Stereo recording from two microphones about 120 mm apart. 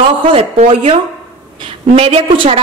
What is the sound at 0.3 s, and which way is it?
Speech, 60° right (ahead or behind).